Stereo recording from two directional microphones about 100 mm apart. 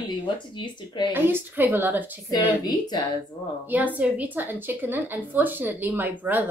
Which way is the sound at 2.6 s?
40° left (ahead or behind).